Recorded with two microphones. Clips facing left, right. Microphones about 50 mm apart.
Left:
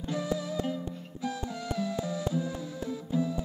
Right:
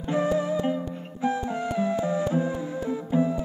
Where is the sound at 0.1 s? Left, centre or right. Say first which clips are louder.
Right 9 dB; right.